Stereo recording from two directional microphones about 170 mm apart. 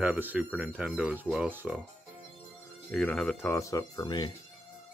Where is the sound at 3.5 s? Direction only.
20° left (ahead or behind).